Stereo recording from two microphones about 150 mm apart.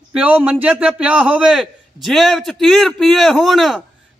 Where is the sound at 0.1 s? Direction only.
10° right (ahead or behind).